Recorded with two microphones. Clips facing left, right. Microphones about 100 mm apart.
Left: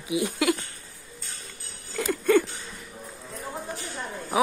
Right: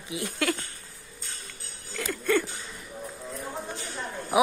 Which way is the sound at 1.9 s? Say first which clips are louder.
Left 5 dB; 15° left (ahead or behind).